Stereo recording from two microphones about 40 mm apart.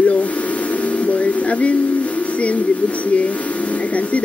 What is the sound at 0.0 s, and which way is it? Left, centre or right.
Speech, left.